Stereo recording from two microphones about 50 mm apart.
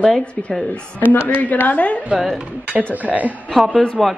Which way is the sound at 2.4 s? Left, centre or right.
Right.